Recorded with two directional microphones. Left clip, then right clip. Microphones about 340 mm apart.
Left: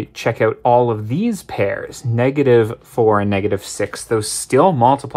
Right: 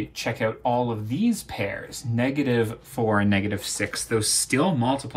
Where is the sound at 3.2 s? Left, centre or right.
Left.